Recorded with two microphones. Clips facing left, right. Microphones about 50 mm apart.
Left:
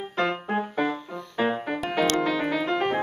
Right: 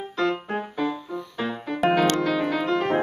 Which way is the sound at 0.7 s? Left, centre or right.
Left.